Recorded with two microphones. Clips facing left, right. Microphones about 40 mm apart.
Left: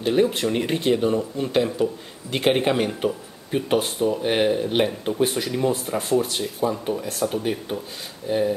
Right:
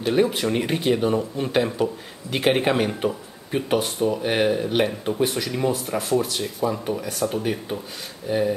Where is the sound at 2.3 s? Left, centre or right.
Centre.